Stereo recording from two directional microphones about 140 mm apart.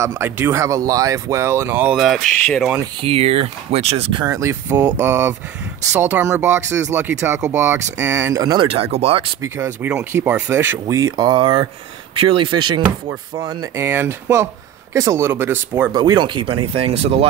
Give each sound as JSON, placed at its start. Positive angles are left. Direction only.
{"t": 0.0, "sound": "speech", "side_deg": -20}
{"t": 2.0, "sound": "speech", "side_deg": 0}
{"t": 3.0, "sound": "speech", "side_deg": -45}
{"t": 4.2, "sound": "speech", "side_deg": -20}
{"t": 8.6, "sound": "speech", "side_deg": -45}
{"t": 9.4, "sound": "speech", "side_deg": -20}
{"t": 11.1, "sound": "speech", "side_deg": -35}
{"t": 13.8, "sound": "speech", "side_deg": -15}
{"t": 15.9, "sound": "speech", "side_deg": -30}